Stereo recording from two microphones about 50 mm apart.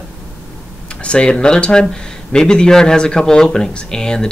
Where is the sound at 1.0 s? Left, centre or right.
Left.